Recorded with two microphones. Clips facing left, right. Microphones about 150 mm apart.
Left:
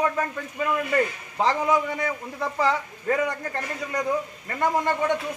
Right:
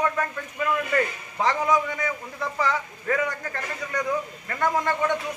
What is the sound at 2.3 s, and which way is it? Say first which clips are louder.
A man's voice: left 3 dB; 25° left (ahead or behind).